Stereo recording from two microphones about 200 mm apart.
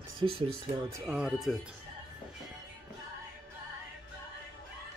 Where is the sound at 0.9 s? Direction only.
5° right (ahead or behind).